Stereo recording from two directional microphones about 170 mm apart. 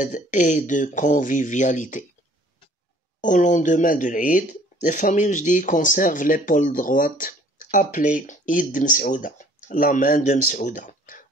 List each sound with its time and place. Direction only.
0.0 s speech: 50° left (ahead or behind)
3.2 s speech: 50° left (ahead or behind)